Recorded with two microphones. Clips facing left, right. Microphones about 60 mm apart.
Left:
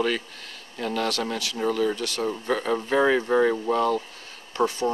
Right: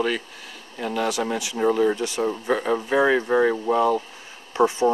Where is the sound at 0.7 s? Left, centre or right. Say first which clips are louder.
Right 2 dB; centre.